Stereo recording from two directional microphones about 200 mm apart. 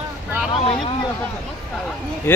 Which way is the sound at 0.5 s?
30° left (ahead or behind).